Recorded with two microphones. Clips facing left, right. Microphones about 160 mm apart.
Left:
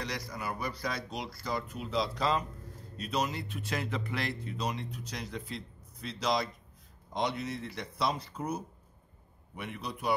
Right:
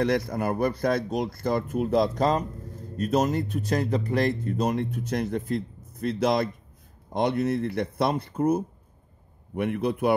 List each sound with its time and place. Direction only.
0.0 s speech: 55° right (ahead or behind)